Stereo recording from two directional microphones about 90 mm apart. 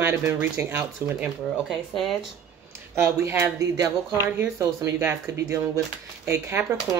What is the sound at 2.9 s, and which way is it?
Speech, 30° right (ahead or behind).